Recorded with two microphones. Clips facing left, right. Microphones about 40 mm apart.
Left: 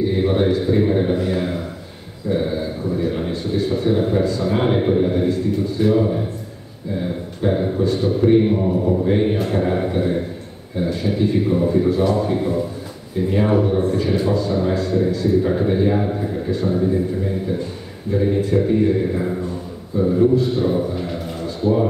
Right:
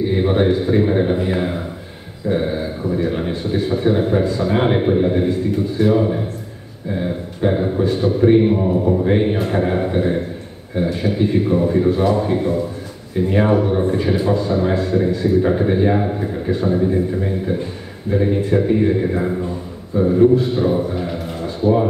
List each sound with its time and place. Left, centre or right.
0.1 s a man's voice: centre